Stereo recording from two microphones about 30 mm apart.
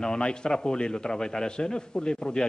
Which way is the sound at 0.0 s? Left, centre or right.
Left.